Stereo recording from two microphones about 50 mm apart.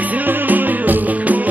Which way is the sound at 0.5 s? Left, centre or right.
Right.